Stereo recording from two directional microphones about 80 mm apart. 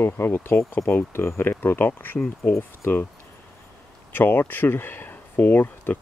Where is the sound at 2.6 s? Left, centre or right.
Left.